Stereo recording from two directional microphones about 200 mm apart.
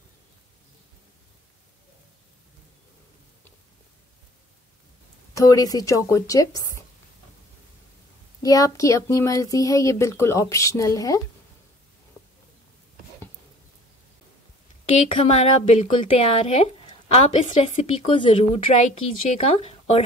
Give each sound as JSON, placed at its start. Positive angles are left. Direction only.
{"t": 5.3, "sound": "speech", "side_deg": 15}
{"t": 8.4, "sound": "speech", "side_deg": 15}
{"t": 14.9, "sound": "a woman's voice", "side_deg": 30}